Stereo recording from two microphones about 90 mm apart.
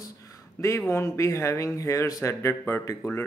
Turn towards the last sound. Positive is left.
turn(degrees=30)  # may be behind; listen again after turning